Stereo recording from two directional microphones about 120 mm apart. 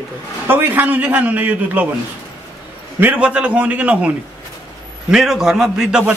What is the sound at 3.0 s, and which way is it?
Speech, 15° right (ahead or behind).